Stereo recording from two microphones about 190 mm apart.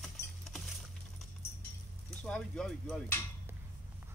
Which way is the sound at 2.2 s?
5° left (ahead or behind).